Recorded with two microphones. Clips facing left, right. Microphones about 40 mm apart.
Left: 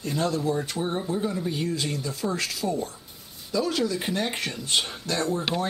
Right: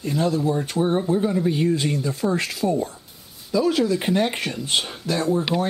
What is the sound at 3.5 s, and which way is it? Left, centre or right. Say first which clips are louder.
Speech: right 6 dB; centre.